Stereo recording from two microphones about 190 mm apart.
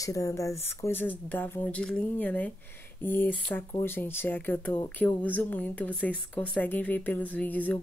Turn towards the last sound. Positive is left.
turn(degrees=10)  # may be behind; listen again after turning